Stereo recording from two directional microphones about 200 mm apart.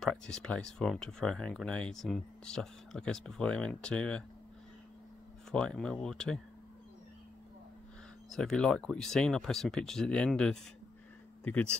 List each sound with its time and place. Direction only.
0.0 s speech: 5° left (ahead or behind)
5.5 s speech: 5° left (ahead or behind)
8.3 s speech: 5° left (ahead or behind)